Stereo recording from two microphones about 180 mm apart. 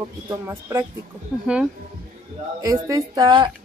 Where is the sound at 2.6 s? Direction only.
20° right (ahead or behind).